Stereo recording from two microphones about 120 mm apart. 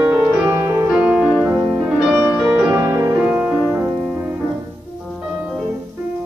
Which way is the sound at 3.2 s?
10° right (ahead or behind).